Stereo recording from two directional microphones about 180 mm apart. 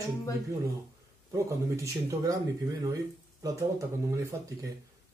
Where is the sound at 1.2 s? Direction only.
20° right (ahead or behind).